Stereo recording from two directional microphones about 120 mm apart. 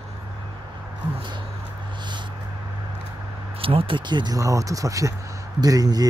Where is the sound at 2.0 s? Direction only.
40° right (ahead or behind).